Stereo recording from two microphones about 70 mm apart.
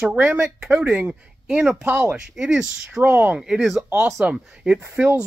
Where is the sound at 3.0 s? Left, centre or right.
Right.